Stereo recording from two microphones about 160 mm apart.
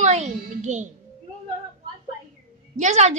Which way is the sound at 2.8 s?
45° right (ahead or behind).